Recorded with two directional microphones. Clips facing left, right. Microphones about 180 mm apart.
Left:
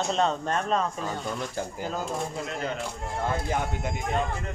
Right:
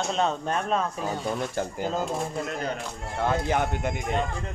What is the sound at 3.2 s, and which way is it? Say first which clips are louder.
Speech: right 4 dB; 70° right (ahead or behind).